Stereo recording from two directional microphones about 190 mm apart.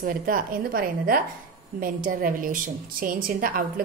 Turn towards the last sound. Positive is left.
turn(degrees=-45)  # may be behind; listen again after turning